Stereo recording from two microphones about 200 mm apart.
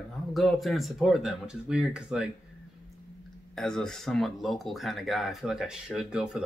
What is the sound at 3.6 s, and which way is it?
Speech, centre (ahead or behind).